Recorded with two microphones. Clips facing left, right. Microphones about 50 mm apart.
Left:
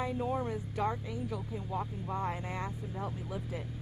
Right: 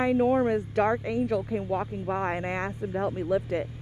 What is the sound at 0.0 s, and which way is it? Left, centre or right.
Speech, right.